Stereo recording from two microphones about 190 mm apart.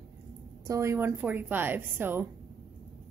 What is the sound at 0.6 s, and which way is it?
A woman's voice, 15° right (ahead or behind).